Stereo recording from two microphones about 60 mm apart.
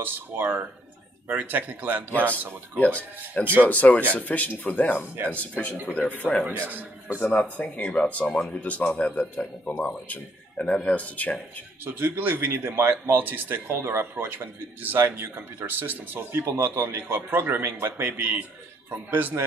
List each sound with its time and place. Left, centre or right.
0.0 s a man's voice: right
2.8 s a man's voice: left
6.5 s a man's voice: right
7.2 s a man's voice: left
11.8 s a man's voice: right
16.5 s a man's voice: right
16.8 s a man's voice: right